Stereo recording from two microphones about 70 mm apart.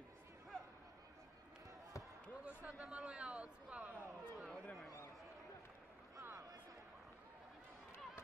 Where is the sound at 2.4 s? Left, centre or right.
Centre.